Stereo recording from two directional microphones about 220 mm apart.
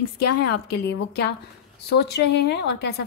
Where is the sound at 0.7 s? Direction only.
50° left (ahead or behind).